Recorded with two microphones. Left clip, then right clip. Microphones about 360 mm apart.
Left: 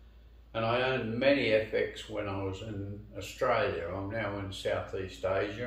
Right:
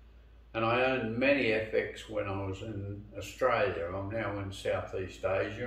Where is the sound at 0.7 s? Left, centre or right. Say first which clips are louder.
Right 1 dB; centre.